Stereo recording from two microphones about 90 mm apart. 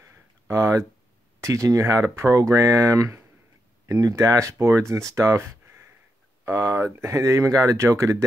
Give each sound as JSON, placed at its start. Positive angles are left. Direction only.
{"t": 0.0, "sound": "a sound", "side_deg": -35}
{"t": 1.4, "sound": "speech", "side_deg": -35}
{"t": 6.4, "sound": "speech", "side_deg": -35}